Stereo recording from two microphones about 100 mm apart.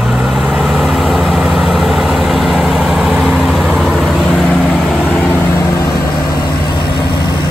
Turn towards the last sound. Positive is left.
turn(degrees=30)  # may be behind; listen again after turning